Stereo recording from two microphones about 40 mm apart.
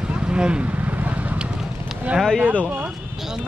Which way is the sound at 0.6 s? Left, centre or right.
Right.